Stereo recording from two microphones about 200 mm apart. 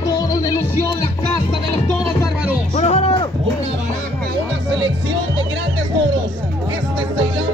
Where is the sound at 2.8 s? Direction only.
35° left (ahead or behind).